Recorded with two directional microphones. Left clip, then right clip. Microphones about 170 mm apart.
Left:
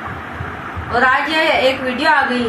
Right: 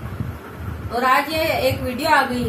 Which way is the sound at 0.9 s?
35° right (ahead or behind).